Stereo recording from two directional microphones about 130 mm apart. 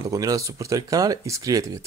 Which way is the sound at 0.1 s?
25° right (ahead or behind).